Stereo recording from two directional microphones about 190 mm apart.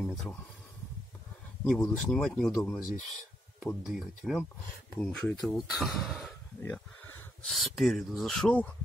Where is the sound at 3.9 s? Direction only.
Centre (ahead or behind).